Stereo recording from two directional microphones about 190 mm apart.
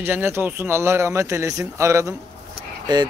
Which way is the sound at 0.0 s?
10° right (ahead or behind).